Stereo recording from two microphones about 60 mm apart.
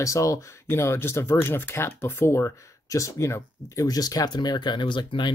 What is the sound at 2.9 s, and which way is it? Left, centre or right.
Speech, left.